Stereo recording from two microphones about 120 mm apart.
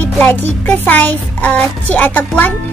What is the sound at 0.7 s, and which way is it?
A child's voice, 15° left (ahead or behind).